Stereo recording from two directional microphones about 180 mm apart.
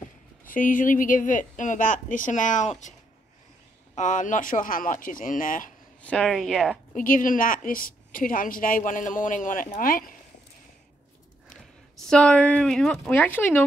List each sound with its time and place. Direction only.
0.5 s a woman's voice: 50° left (ahead or behind)
3.9 s a woman's voice: 45° left (ahead or behind)
6.0 s speech: 5° left (ahead or behind)
6.9 s a woman's voice: 50° left (ahead or behind)
12.0 s speech: 5° left (ahead or behind)